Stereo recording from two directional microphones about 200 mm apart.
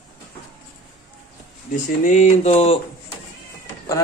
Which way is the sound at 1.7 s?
40° left (ahead or behind).